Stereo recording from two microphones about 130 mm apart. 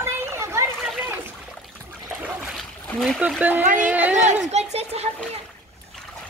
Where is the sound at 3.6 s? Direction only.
90° right.